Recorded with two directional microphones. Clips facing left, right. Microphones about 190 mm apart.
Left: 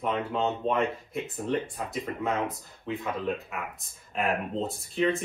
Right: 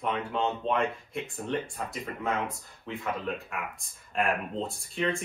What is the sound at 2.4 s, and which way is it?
Speech, centre (ahead or behind).